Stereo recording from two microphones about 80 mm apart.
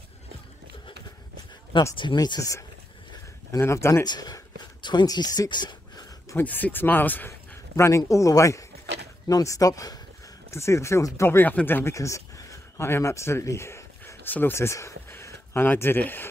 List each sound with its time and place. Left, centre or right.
2.1 s speech: left
3.5 s speech: left
4.0 s speech: left
4.8 s a sound: left
6.3 s speech: left
7.7 s speech: left
10.5 s speech: left
11.2 s speech: left
11.9 s a sound: left
14.3 s speech: left